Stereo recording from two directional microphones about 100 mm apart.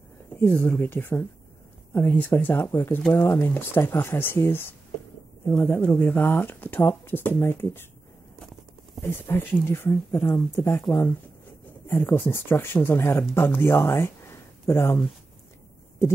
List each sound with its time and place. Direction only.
0.4 s speech: 20° left (ahead or behind)
9.0 s speech: 20° left (ahead or behind)
11.9 s speech: 25° left (ahead or behind)